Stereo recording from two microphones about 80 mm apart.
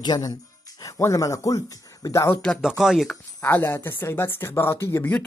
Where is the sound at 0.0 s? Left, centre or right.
Left.